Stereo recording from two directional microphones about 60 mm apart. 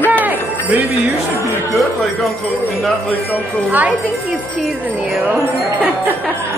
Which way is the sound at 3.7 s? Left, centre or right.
Right.